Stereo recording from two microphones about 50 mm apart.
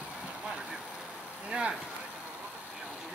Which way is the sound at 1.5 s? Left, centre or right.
Centre.